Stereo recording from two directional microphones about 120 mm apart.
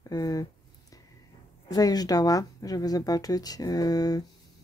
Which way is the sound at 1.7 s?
30° left (ahead or behind).